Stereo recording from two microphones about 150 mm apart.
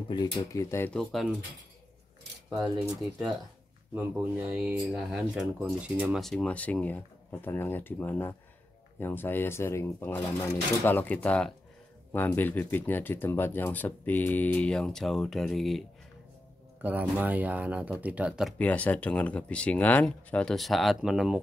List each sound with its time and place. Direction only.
0.1 s speech: 25° left (ahead or behind)
0.9 s speech: centre (ahead or behind)
3.9 s speech: 10° right (ahead or behind)
16.8 s speech: 10° right (ahead or behind)
18.6 s speech: 10° left (ahead or behind)